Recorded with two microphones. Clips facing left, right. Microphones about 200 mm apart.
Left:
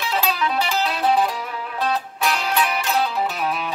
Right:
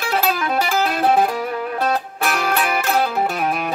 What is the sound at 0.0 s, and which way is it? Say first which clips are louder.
Music: right 2 dB; 50° right (ahead or behind).